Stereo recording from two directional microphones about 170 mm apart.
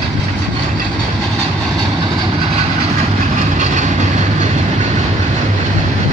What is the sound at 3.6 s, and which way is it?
Train, 45° right (ahead or behind).